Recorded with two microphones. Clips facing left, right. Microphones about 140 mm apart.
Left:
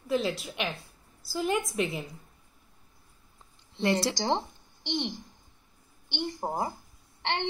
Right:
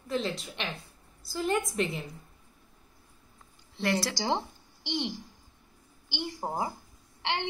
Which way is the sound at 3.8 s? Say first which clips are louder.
Left 3 dB; 25° left (ahead or behind).